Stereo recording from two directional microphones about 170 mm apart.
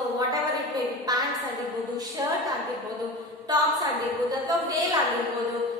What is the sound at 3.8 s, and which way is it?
A woman's voice, 20° right (ahead or behind).